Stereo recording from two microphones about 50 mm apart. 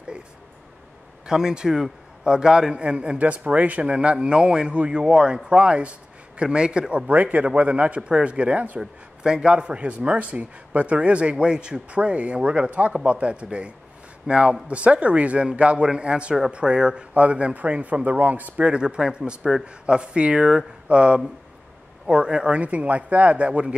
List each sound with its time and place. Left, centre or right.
1.2 s a man's voice: centre
7.1 s a man's voice: right
9.2 s a man's voice: centre